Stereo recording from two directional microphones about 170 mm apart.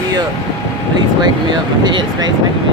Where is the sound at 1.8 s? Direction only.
25° right (ahead or behind).